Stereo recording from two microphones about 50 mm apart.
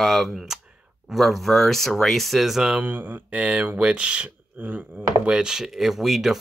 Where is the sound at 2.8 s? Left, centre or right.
Right.